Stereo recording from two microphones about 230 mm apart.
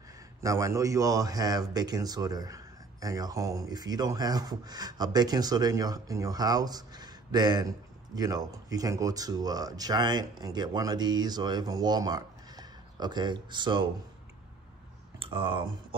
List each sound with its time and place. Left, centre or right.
0.4 s a man's voice: centre
15.1 s speech: right